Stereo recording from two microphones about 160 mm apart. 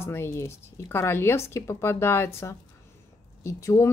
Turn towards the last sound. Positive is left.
turn(degrees=20)  # may be behind; listen again after turning